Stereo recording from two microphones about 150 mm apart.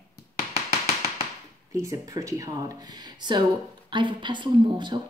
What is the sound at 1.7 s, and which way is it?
A woman's voice, 20° right (ahead or behind).